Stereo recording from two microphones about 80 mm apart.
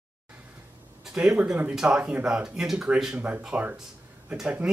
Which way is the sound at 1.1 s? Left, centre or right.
Centre.